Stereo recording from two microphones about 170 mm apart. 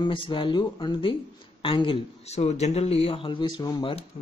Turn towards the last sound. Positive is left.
turn(degrees=25)  # may be behind; listen again after turning